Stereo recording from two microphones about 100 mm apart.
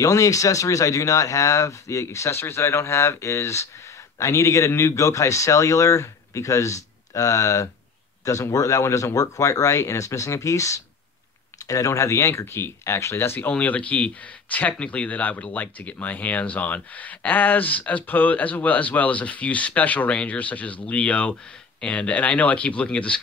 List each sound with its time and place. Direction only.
0.0 s speech: 35° left (ahead or behind)
13.5 s speech: 15° left (ahead or behind)